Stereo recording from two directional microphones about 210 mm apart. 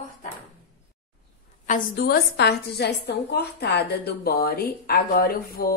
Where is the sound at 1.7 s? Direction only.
45° left (ahead or behind).